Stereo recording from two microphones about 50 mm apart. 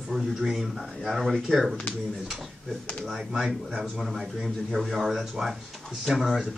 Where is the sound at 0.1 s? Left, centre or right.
Centre.